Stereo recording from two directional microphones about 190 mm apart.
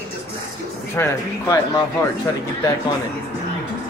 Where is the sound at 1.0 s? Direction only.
20° left (ahead or behind).